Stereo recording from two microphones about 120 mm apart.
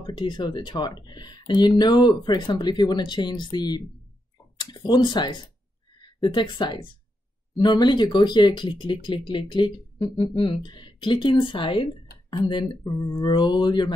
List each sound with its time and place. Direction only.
0.0 s speech: 40° left (ahead or behind)